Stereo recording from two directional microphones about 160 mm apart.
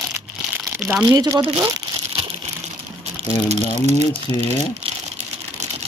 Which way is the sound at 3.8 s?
45° right (ahead or behind).